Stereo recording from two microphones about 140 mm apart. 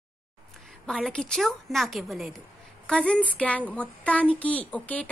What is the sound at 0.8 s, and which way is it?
A woman's voice, centre (ahead or behind).